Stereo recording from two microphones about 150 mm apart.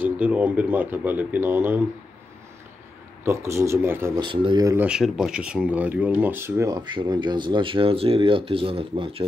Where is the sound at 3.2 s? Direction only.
20° right (ahead or behind).